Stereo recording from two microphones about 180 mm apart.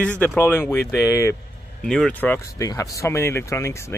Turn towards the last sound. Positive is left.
turn(degrees=15)  # may be behind; listen again after turning